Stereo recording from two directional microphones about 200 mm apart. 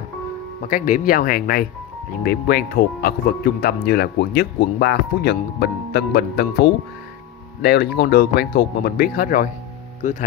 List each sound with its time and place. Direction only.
0.6 s speech: 40° left (ahead or behind)